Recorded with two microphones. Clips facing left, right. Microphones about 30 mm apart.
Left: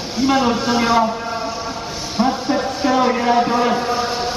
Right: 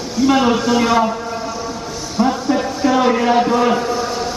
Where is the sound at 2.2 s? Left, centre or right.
Left.